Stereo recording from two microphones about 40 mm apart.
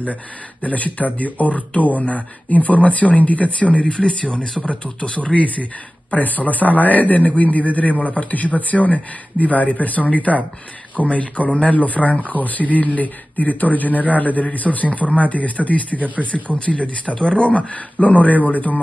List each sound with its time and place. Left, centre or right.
0.0 s speech: left
3.9 s speech: left